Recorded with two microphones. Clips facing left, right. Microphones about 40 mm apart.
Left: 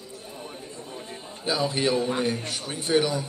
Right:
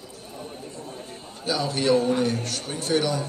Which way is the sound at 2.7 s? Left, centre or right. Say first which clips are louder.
Left 1 dB; centre.